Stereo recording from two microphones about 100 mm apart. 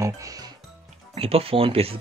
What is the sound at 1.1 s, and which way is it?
Speech, 75° right (ahead or behind).